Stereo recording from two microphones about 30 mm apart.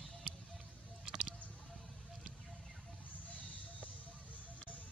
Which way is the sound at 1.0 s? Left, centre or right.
Right.